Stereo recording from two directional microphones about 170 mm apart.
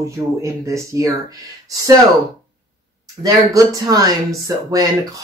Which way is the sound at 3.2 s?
20° right (ahead or behind).